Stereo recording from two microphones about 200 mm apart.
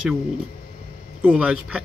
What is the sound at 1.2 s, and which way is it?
Speech, centre (ahead or behind).